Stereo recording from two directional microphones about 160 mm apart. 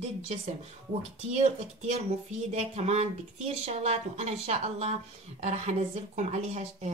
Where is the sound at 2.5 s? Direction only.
40° right (ahead or behind).